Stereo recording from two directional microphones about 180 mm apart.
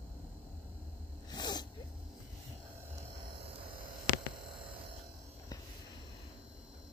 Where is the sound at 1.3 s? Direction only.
25° left (ahead or behind).